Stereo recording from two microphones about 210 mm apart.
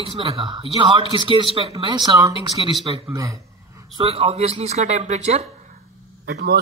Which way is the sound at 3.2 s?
15° right (ahead or behind).